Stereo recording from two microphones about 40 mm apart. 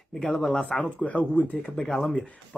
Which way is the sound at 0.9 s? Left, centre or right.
Left.